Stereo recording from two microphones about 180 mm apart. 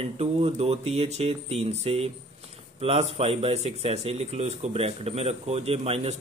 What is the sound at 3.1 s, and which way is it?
A man's voice, 30° right (ahead or behind).